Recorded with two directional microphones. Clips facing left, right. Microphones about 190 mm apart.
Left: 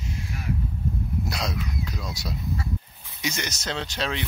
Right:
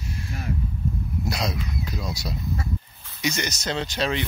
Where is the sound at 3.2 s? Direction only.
Centre (ahead or behind).